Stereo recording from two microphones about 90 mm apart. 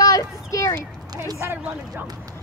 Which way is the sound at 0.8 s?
45° right (ahead or behind).